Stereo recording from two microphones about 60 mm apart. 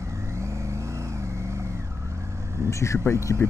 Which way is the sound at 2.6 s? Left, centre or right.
Left.